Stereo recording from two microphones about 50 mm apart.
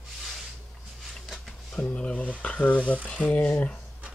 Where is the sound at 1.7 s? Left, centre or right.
Left.